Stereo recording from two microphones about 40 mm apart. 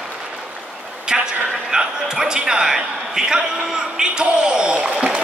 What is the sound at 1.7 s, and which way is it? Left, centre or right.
A man's voice, centre.